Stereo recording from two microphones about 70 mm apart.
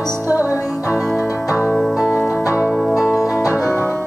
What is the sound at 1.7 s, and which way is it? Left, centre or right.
Music, centre.